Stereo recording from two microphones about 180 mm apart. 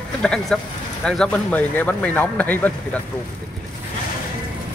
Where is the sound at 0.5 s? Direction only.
5° left (ahead or behind).